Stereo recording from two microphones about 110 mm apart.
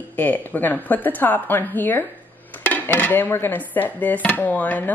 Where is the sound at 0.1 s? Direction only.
15° left (ahead or behind).